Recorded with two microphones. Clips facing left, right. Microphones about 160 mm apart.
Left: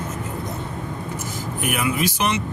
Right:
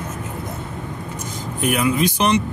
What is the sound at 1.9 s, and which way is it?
Speech, 25° right (ahead or behind).